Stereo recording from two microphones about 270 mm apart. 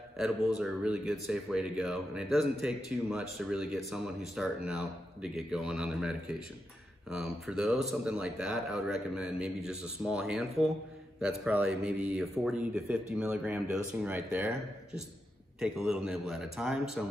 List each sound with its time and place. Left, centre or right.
0.2 s speech: centre
15.6 s speech: centre